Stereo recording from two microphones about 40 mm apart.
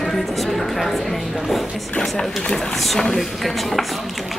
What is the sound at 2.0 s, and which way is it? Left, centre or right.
Speech, centre.